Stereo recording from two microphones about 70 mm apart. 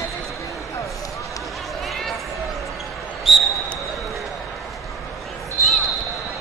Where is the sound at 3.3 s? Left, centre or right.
Centre.